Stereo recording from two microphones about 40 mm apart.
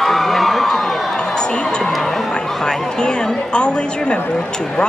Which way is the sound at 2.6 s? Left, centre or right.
Centre.